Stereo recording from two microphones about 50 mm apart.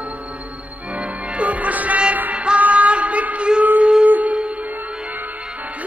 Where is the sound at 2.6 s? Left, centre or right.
Right.